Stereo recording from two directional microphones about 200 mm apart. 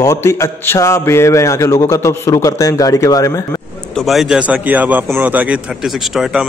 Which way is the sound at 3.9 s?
Centre (ahead or behind).